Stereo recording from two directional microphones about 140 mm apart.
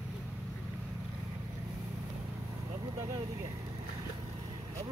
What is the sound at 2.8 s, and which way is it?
Vehicle, 30° right (ahead or behind).